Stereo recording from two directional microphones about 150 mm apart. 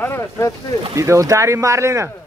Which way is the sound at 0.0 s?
20° left (ahead or behind).